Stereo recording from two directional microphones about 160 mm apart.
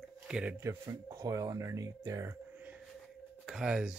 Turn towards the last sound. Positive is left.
turn(degrees=-5)  # may be behind; listen again after turning